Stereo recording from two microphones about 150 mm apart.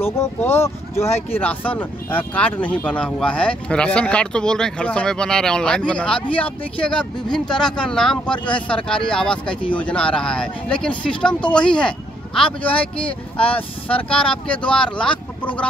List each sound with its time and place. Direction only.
0.0 s speech: 15° left (ahead or behind)